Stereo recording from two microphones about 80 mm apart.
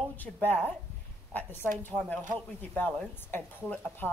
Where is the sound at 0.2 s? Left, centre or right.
Left.